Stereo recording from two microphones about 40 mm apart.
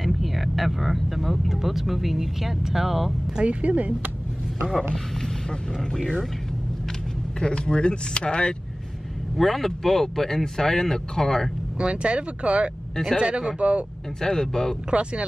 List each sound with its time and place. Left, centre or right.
0.0 s speech: centre
3.4 s speech: right
7.3 s speech: left
9.4 s speech: centre
11.8 s speech: right
14.2 s speech: centre
14.9 s speech: right